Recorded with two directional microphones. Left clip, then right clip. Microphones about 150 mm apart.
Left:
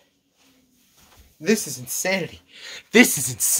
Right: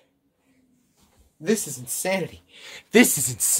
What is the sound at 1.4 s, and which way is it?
Speech, 30° left (ahead or behind).